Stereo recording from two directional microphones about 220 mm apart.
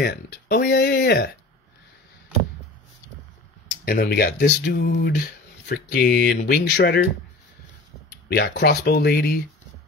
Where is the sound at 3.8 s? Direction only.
45° left (ahead or behind).